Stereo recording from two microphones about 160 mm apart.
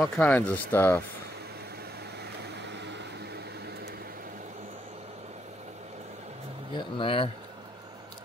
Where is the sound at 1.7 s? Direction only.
90° right.